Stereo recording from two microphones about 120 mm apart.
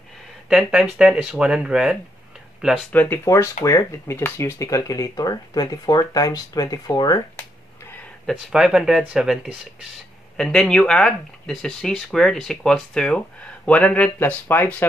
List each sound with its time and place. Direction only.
0.5 s speech: 5° right (ahead or behind)
2.9 s speech: 15° left (ahead or behind); by 7.2 s 30° left (ahead or behind)
8.3 s speech: centre (ahead or behind); by 14.9 s 15° left (ahead or behind)